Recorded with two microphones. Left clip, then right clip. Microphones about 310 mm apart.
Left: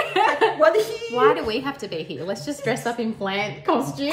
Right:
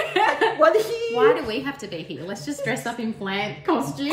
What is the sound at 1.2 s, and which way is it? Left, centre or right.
A woman's voice, centre.